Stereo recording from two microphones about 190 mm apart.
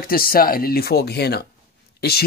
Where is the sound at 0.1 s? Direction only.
50° left (ahead or behind).